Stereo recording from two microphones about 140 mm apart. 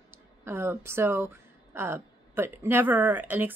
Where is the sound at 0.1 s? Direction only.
15° right (ahead or behind).